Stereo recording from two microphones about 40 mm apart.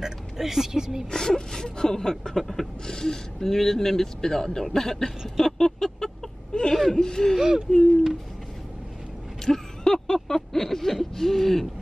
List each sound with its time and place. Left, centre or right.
0.0 s speech: centre
1.1 s speech: centre
5.4 s a sound: centre
6.7 s speech: centre
7.3 s speech: centre
9.4 s a sound: centre